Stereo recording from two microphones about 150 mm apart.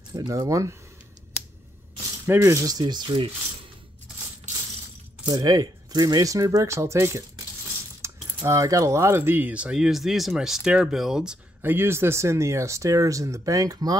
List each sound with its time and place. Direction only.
0.1 s speech: 25° right (ahead or behind)
2.2 s speech: 15° right (ahead or behind)
5.2 s speech: 25° right (ahead or behind)